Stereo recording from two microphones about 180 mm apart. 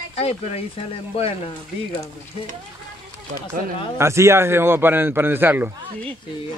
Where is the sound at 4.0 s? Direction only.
15° right (ahead or behind).